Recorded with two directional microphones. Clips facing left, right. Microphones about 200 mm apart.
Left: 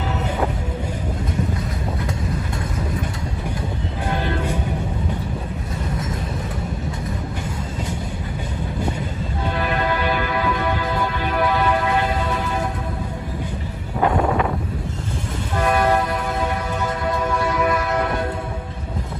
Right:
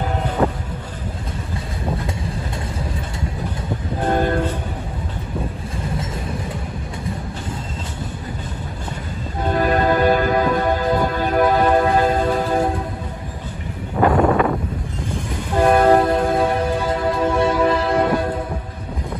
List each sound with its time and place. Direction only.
4.0 s train: 45° right (ahead or behind)
9.5 s music: 40° right (ahead or behind)
14.0 s a sound: 5° left (ahead or behind)
15.6 s train: 40° right (ahead or behind)
16.0 s music: 25° right (ahead or behind)